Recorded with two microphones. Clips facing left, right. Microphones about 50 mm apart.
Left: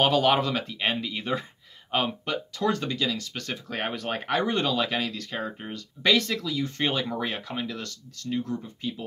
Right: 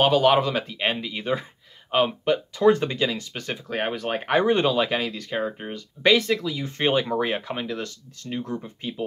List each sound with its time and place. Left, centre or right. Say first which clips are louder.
0.0 s speech: right 3 dB; centre; by 9.0 s right